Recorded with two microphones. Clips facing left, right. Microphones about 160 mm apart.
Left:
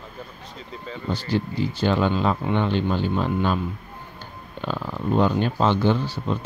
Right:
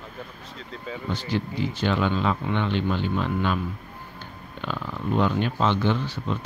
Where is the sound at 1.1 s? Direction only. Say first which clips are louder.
Left 3 dB; 35° left (ahead or behind).